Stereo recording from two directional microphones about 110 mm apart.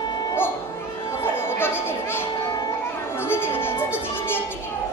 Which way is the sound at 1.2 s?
20° left (ahead or behind).